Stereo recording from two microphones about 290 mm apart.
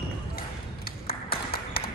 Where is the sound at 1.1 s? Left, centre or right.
Centre.